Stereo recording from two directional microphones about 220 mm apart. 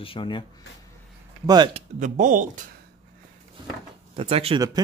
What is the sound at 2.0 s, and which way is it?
Speech, 35° right (ahead or behind).